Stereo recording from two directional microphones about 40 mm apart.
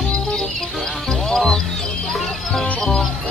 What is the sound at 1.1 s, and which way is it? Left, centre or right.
Music, centre.